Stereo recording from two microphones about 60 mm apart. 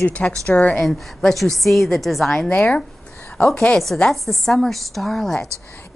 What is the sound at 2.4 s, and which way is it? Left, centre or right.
A woman's voice, left.